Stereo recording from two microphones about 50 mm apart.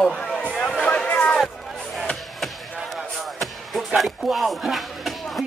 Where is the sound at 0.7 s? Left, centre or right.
Centre.